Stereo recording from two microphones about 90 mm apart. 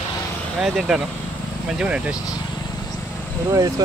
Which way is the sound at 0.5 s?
5° right (ahead or behind).